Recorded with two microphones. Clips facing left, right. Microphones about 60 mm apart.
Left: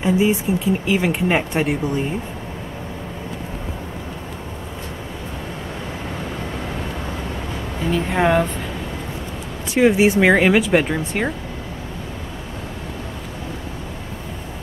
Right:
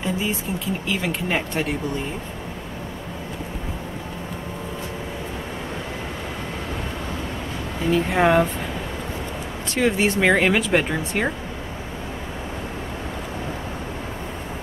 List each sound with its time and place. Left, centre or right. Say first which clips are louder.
0.0 s speech: left 8 dB; centre
7.9 s speech: even; centre
9.8 s speech: left 6 dB; centre